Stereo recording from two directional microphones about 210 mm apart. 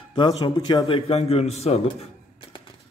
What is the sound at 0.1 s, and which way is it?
A man's voice, 20° left (ahead or behind).